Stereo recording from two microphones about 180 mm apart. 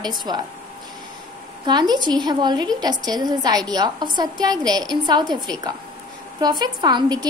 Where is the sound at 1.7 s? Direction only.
25° right (ahead or behind).